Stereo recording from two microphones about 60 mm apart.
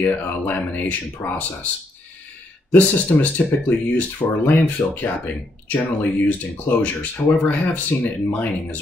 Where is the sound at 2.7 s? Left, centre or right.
Left.